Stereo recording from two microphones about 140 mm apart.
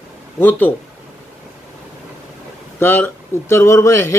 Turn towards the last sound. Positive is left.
turn(degrees=20)  # may be behind; listen again after turning